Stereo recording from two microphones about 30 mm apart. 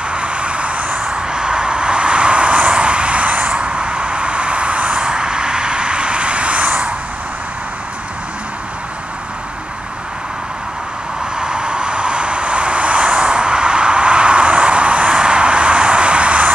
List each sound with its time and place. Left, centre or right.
0.1 s vehicle: right
1.0 s vehicle: right
4.9 s vehicle: right
11.3 s vehicle: right
15.0 s a sound: right